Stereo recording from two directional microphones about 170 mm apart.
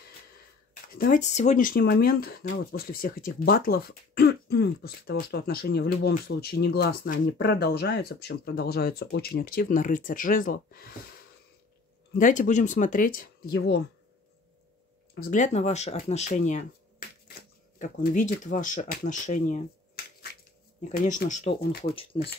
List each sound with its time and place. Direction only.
0.9 s speech: 55° left (ahead or behind)
12.2 s speech: 45° left (ahead or behind); by 13.8 s 70° left (ahead or behind)
15.1 s speech: 60° left (ahead or behind)
15.4 s speech: 40° left (ahead or behind)
17.3 s shuffling cards: 50° left (ahead or behind)
18.4 s speech: 50° left (ahead or behind)
20.9 s speech: 55° left (ahead or behind)
21.8 s speech: 30° left (ahead or behind)